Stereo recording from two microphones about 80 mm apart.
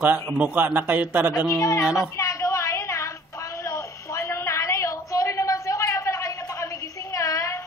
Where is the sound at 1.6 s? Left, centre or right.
Left.